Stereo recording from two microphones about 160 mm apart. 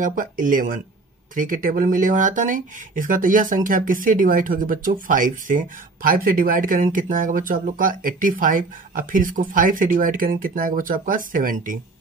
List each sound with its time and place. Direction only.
0.0 s speech: 55° right (ahead or behind)